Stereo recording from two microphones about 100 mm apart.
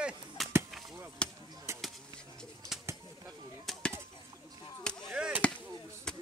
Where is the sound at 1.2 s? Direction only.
10° left (ahead or behind).